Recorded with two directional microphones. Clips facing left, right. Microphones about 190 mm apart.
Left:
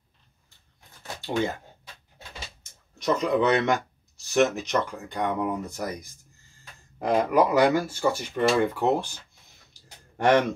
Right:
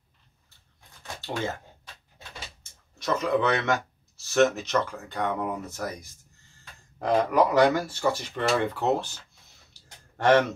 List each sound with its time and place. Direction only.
1.0 s shuffling cards: 15° left (ahead or behind)
3.0 s speech: 15° left (ahead or behind)
7.0 s speech: 10° left (ahead or behind)